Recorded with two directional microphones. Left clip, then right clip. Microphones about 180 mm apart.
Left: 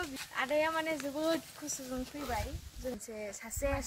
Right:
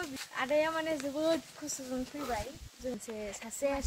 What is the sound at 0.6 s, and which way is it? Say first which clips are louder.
Speech: right 1 dB; 20° right (ahead or behind).